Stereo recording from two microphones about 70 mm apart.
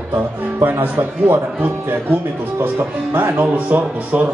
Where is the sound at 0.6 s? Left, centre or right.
Right.